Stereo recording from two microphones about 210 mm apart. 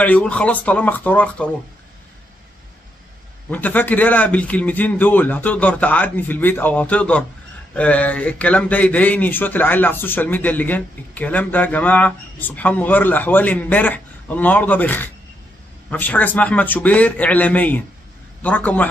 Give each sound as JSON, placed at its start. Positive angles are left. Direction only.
{"t": 0.0, "sound": "a man's voice", "side_deg": 5}
{"t": 3.4, "sound": "a man's voice", "side_deg": 10}